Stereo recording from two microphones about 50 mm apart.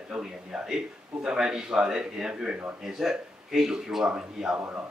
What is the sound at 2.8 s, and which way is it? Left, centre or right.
A man's voice, centre.